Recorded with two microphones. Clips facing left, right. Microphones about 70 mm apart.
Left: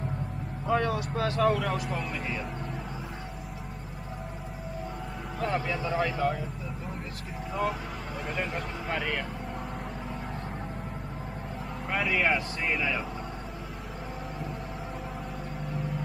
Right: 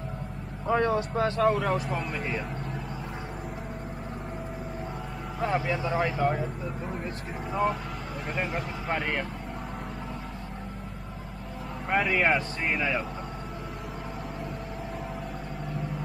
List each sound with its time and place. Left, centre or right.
0.7 s speech: right
1.4 s speech: centre
5.4 s speech: centre
8.3 s speech: centre
11.9 s speech: centre